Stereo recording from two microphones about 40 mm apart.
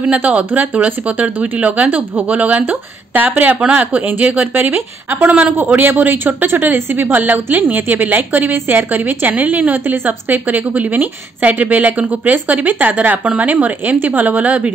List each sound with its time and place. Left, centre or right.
0.1 s speech: right